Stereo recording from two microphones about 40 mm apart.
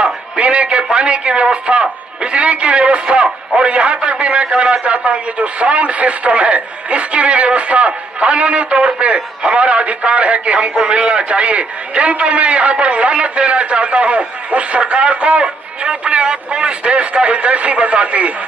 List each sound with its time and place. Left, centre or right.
0.0 s music: right
0.9 s a man's voice: right